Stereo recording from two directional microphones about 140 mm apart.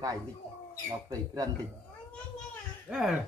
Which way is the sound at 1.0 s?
30° right (ahead or behind).